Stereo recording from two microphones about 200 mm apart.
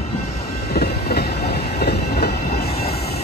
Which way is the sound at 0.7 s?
50° left (ahead or behind).